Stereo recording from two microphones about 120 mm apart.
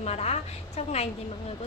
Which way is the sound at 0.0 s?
60° left (ahead or behind).